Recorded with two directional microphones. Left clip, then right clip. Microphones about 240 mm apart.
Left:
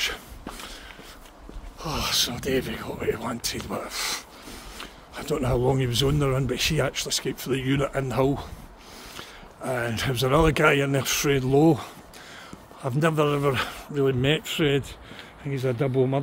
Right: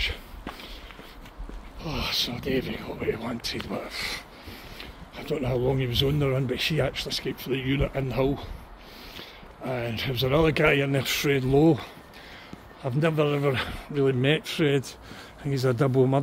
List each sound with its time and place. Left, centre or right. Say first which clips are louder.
0.0 s a sound: left 2 dB; left
1.8 s speech: left 3 dB; left
3.0 s speech: left 2 dB; centre
6.1 s speech: left 1 dB; centre
15.4 s speech: right 1 dB; centre